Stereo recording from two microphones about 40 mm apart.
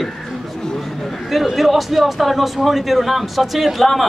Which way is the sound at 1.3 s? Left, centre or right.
Centre.